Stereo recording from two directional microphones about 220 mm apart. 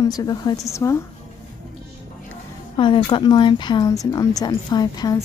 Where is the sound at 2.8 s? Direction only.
20° left (ahead or behind).